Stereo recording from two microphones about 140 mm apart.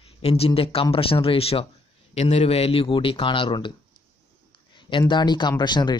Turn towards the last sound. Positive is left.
turn(degrees=30)  # may be behind; listen again after turning